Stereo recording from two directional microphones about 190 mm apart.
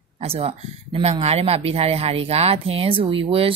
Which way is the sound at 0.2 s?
30° right (ahead or behind).